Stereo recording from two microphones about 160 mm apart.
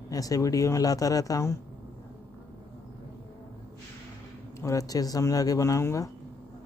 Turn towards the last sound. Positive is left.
turn(degrees=20)  # may be behind; listen again after turning